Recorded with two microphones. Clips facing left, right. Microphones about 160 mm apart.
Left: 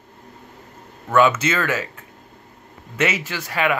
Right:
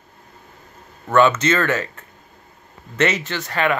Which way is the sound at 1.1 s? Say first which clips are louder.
Right 1 dB; 10° left (ahead or behind).